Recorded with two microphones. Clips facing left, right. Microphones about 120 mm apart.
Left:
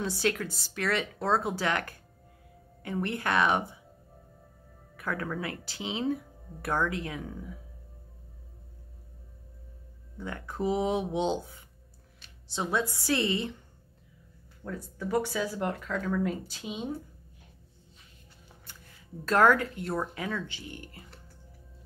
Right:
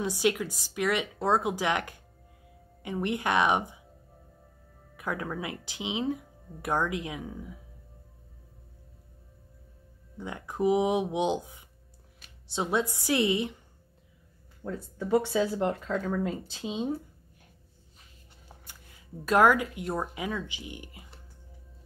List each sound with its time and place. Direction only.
0.0 s speech: 15° right (ahead or behind)
4.9 s speech: 15° right (ahead or behind)
10.1 s speech: 15° right (ahead or behind)
14.6 s speech: 20° right (ahead or behind)
19.2 s speech: 15° right (ahead or behind)